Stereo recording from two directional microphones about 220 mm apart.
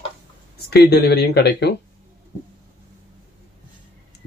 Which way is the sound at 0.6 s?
45° left (ahead or behind).